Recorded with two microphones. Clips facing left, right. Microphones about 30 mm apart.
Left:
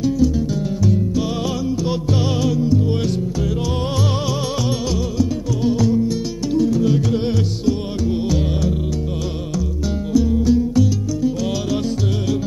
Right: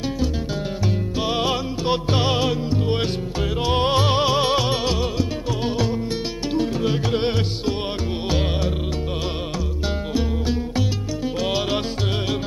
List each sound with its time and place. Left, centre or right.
1.9 s music: right
10.1 s music: right